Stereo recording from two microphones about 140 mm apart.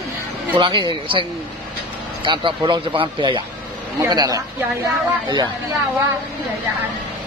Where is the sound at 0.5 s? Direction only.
35° right (ahead or behind).